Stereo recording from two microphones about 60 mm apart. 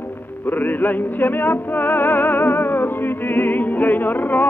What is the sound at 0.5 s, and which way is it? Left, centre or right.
Music, left.